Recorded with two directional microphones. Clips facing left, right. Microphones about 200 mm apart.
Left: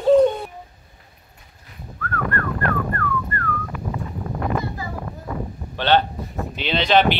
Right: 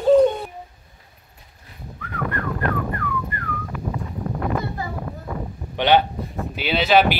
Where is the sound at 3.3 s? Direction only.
15° right (ahead or behind).